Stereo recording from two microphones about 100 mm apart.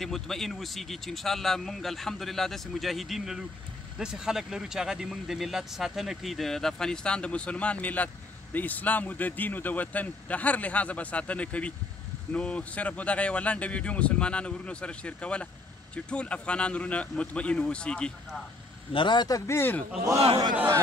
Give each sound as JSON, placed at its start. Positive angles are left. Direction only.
{"t": 0.0, "sound": "speech", "side_deg": 5}
{"t": 18.9, "sound": "a man's voice", "side_deg": 55}
{"t": 19.2, "sound": "speech", "side_deg": 30}